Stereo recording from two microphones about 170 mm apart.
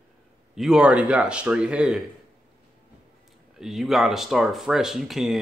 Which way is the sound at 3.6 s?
Centre (ahead or behind).